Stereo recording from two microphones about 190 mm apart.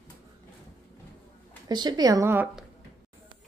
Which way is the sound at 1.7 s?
20° right (ahead or behind).